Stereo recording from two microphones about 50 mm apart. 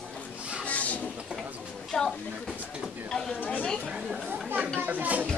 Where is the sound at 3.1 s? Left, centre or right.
Centre.